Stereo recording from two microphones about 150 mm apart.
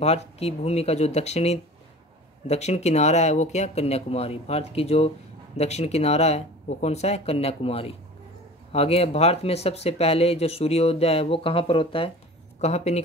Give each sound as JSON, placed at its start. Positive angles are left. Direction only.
{"t": 0.0, "sound": "speech", "side_deg": 45}
{"t": 12.5, "sound": "speech", "side_deg": 45}